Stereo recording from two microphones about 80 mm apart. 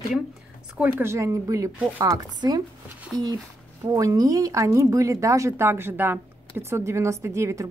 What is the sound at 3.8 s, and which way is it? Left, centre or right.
Speech, right.